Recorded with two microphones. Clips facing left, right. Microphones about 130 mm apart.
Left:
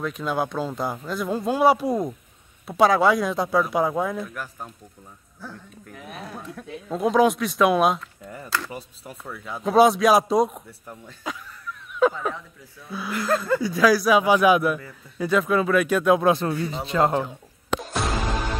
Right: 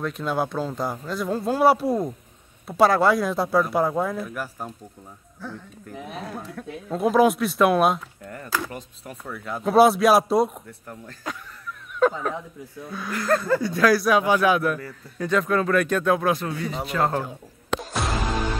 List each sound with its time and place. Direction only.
0.0 s a man's voice: centre (ahead or behind)
5.9 s speech: 20° right (ahead or behind)
6.5 s a man's voice: centre (ahead or behind)
8.5 s speech: 10° right (ahead or behind)
8.7 s a man's voice: centre (ahead or behind); by 17.2 s 20° left (ahead or behind)
17.7 s music: centre (ahead or behind)